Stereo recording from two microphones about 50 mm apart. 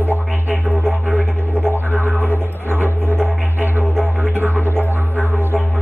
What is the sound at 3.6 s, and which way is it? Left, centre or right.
Music, right.